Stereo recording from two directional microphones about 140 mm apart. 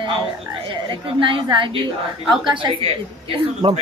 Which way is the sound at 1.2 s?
35° right (ahead or behind).